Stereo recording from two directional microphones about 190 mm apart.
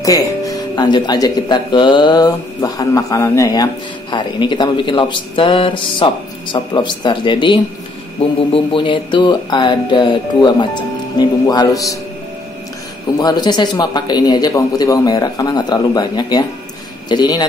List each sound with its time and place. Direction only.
0.0 s speech: 20° left (ahead or behind)
8.7 s speech: 25° left (ahead or behind)
13.2 s speech: 20° left (ahead or behind)